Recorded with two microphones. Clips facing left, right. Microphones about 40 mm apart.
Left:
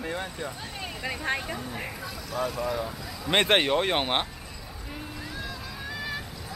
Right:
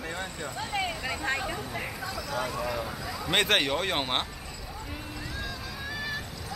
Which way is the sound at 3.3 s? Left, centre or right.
Centre.